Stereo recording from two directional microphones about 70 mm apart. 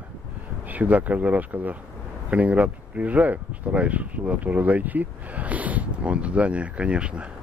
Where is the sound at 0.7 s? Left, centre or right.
Right.